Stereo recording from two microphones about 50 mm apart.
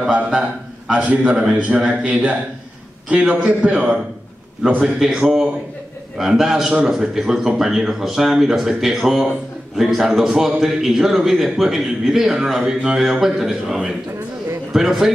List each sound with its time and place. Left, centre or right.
0.1 s a man's voice: right
1.0 s a man's voice: right
4.9 s a man's voice: centre